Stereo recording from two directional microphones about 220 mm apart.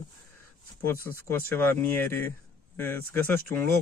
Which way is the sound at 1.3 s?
10° left (ahead or behind).